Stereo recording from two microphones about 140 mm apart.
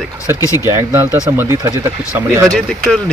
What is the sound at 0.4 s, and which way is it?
Speech, 25° left (ahead or behind).